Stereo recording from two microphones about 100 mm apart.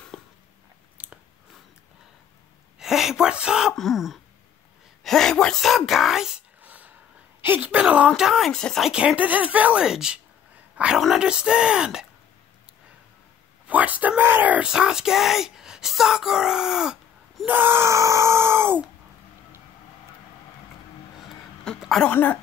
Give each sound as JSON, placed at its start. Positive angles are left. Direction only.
{"t": 0.1, "sound": "a sound", "side_deg": 5}
{"t": 0.9, "sound": "chewing", "side_deg": -15}
{"t": 2.8, "sound": "speech", "side_deg": -5}
{"t": 6.6, "sound": "a sound", "side_deg": -15}
{"t": 7.4, "sound": "speech", "side_deg": -15}
{"t": 8.2, "sound": "speech", "side_deg": 0}
{"t": 8.8, "sound": "speech", "side_deg": -10}
{"t": 13.7, "sound": "speech", "side_deg": -15}
{"t": 17.5, "sound": "speech", "side_deg": -20}
{"t": 21.7, "sound": "a sound", "side_deg": 0}
{"t": 22.1, "sound": "speech", "side_deg": 15}